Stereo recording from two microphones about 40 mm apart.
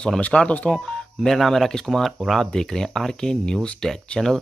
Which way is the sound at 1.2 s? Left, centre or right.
Centre.